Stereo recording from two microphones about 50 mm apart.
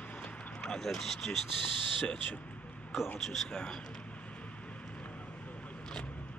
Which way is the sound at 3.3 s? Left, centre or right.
Centre.